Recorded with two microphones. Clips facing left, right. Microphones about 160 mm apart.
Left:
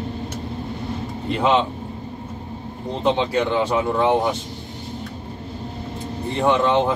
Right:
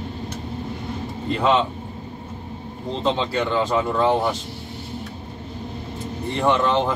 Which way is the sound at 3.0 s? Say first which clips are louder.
Left 3 dB; 15° left (ahead or behind).